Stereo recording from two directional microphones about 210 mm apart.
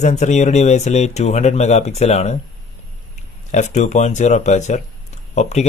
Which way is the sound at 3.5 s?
35° left (ahead or behind).